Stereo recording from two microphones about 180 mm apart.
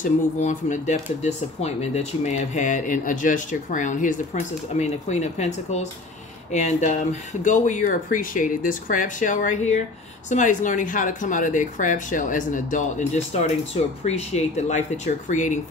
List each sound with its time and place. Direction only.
0.0 s speech: 40° left (ahead or behind)